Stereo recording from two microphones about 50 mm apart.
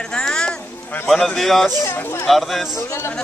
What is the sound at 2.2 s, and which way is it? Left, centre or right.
Speech, centre.